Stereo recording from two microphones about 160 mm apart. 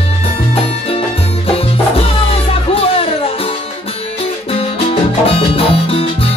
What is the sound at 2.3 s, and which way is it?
Music, 35° left (ahead or behind).